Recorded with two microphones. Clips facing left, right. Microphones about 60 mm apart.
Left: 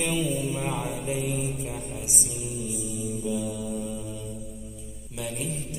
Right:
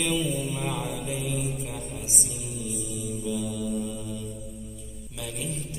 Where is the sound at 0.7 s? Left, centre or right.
Left.